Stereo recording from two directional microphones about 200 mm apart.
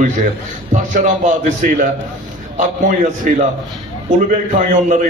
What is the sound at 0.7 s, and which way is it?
A man's voice, 40° right (ahead or behind).